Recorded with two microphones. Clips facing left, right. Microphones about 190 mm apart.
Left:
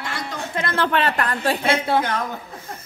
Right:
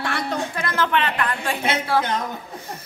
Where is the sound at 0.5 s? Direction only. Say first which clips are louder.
Left 4 dB; 30° left (ahead or behind).